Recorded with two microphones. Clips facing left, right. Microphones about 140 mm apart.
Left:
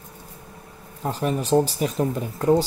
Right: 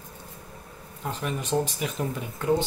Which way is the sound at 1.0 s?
35° left (ahead or behind).